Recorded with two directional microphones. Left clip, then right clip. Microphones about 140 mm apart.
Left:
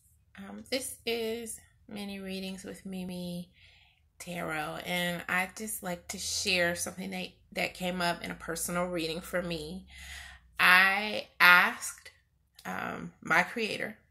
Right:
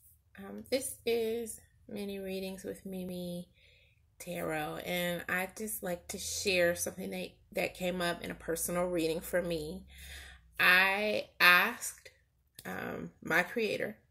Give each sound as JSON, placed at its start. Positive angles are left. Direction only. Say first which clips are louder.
{"t": 0.3, "sound": "a sound", "louder": "right 1 dB", "side_deg": -30}
{"t": 2.1, "sound": "speech", "louder": "even", "side_deg": -25}
{"t": 3.1, "sound": "speech", "louder": "even", "side_deg": 5}
{"t": 4.2, "sound": "speech", "louder": "left 1 dB", "side_deg": -30}